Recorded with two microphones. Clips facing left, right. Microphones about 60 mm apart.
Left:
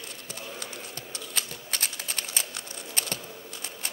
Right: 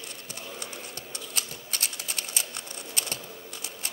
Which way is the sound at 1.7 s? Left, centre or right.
Left.